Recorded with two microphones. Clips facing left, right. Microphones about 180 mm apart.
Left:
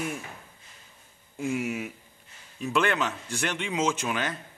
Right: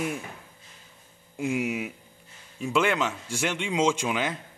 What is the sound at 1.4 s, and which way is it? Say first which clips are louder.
A man's voice: right 2 dB; 15° right (ahead or behind).